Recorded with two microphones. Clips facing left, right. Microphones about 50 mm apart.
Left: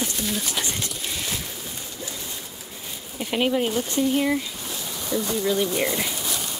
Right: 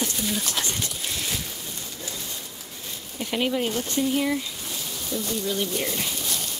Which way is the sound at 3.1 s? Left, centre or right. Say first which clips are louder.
Left 3 dB; centre.